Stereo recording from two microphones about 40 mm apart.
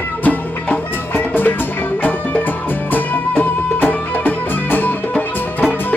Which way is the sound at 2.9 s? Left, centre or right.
Left.